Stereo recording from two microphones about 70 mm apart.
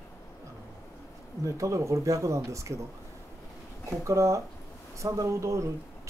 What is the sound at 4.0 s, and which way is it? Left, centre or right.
Speech, right.